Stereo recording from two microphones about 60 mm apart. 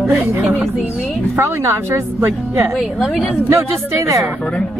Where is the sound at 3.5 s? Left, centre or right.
Right.